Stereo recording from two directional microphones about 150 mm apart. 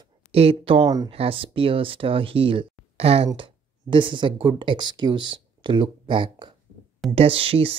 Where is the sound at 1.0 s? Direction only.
40° right (ahead or behind).